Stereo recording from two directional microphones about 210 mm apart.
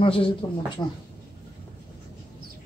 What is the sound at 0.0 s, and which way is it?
Speech, 25° left (ahead or behind).